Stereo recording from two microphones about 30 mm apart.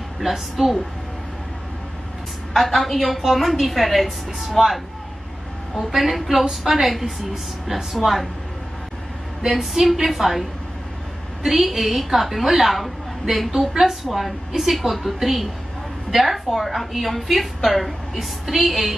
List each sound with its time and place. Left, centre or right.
0.2 s a woman's voice: centre
2.5 s a woman's voice: centre
5.9 s a woman's voice: centre
9.5 s a woman's voice: centre
11.4 s a woman's voice: centre
14.0 s a woman's voice: centre